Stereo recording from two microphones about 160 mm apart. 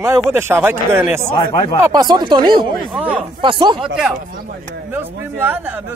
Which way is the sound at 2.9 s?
10° right (ahead or behind).